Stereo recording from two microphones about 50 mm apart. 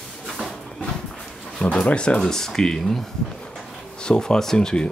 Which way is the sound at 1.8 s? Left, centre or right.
Centre.